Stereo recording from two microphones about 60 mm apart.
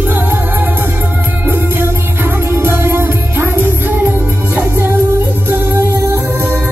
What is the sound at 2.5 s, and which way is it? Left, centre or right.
Music, right.